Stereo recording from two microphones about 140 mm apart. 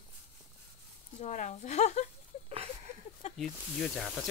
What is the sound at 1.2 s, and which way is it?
Speech, 60° left (ahead or behind).